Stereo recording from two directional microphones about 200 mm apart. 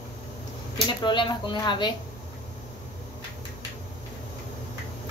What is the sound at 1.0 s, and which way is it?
Speech, 25° left (ahead or behind).